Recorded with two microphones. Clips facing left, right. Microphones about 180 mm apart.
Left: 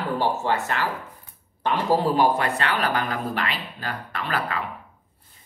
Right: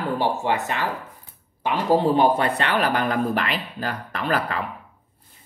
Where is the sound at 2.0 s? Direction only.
25° right (ahead or behind).